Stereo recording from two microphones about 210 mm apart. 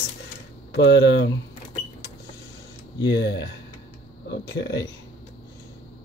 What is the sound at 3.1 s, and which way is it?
Speech, 55° left (ahead or behind).